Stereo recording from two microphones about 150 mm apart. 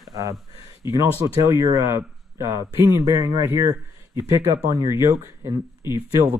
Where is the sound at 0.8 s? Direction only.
20° right (ahead or behind).